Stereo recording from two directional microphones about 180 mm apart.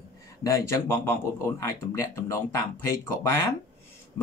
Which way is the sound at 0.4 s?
15° left (ahead or behind).